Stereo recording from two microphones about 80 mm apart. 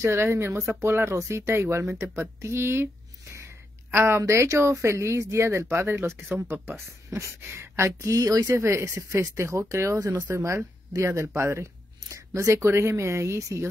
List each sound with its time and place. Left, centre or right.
0.0 s speech: right
2.4 s a sound: right
3.9 s speech: right
9.9 s speech: right
10.3 s speech: right